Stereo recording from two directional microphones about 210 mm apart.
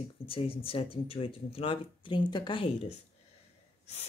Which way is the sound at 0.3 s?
25° left (ahead or behind).